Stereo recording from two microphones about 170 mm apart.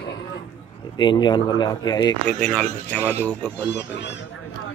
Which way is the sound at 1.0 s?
25° left (ahead or behind).